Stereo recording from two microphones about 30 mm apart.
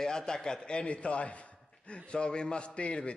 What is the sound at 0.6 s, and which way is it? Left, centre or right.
A man's voice, left.